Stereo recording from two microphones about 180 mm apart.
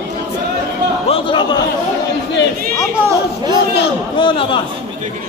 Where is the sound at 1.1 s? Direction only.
25° left (ahead or behind).